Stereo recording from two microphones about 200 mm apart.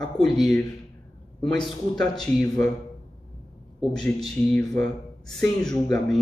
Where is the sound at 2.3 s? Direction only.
15° left (ahead or behind).